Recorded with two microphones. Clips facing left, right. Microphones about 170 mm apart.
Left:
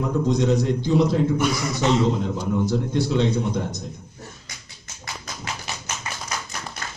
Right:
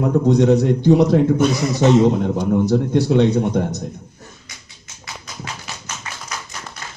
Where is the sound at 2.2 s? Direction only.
65° right (ahead or behind).